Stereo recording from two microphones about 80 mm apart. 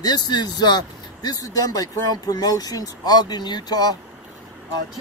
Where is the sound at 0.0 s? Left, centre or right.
Left.